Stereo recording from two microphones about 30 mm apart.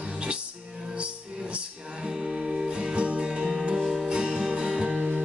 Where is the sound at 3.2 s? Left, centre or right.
Right.